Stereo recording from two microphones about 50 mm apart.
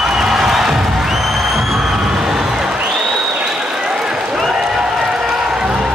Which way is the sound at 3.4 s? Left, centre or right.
Centre.